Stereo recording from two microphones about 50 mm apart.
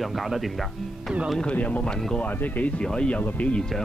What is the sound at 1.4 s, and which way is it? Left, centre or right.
Speech, left.